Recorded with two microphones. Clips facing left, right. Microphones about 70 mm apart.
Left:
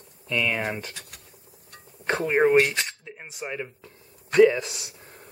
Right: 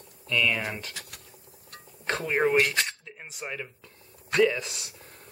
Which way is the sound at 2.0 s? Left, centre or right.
Centre.